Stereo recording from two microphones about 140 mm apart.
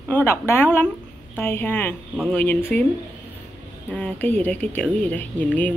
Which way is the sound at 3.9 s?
10° left (ahead or behind).